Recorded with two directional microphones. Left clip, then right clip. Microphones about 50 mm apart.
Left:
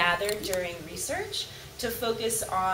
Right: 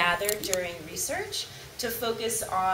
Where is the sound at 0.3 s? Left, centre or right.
Centre.